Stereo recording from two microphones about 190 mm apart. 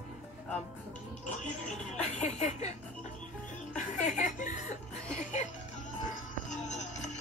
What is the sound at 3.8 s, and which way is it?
Speech, 40° left (ahead or behind).